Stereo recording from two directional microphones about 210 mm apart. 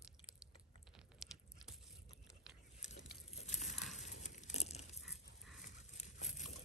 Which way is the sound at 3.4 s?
35° left (ahead or behind).